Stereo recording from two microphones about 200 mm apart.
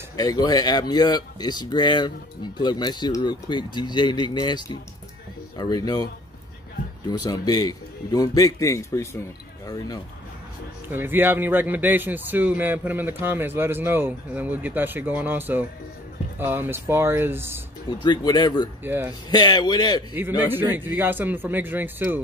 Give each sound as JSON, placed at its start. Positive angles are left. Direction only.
{"t": 0.1, "sound": "speech", "side_deg": 20}
{"t": 7.1, "sound": "speech", "side_deg": 20}
{"t": 10.9, "sound": "a man's voice", "side_deg": -10}
{"t": 17.8, "sound": "speech", "side_deg": 20}
{"t": 20.2, "sound": "a man's voice", "side_deg": -10}